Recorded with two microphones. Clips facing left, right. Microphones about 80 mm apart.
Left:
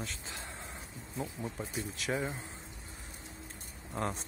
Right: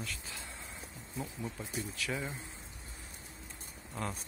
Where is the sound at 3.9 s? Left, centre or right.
Left.